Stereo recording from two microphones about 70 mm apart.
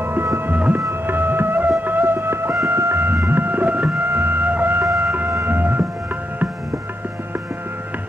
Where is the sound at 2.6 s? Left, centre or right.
Right.